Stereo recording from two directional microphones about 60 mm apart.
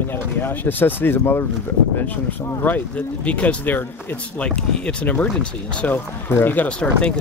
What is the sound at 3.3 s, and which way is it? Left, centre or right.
Speech, left.